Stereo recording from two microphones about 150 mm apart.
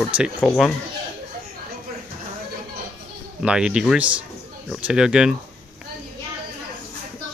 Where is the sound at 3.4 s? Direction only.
5° right (ahead or behind).